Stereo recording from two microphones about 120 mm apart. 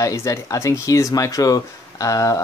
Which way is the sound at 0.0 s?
25° left (ahead or behind).